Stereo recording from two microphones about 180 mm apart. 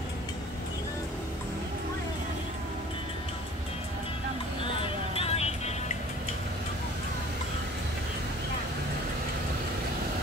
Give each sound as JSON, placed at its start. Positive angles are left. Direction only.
{"t": 4.8, "sound": "music", "side_deg": 35}